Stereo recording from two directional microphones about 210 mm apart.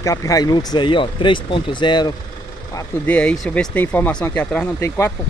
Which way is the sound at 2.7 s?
5° left (ahead or behind).